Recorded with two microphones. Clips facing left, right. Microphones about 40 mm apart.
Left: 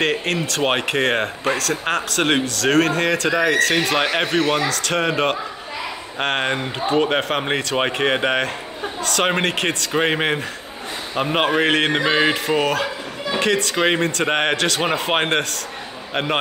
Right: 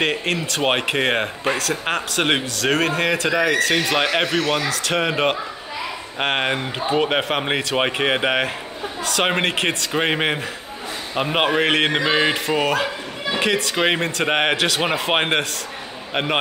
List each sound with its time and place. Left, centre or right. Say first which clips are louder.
0.0 s a man's voice: left 1 dB; centre